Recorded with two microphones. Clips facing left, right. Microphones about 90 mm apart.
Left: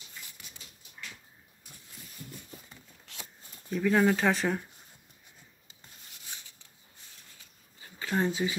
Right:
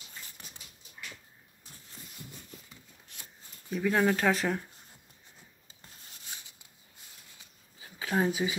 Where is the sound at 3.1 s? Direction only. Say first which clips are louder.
Left 6 dB; 90° left.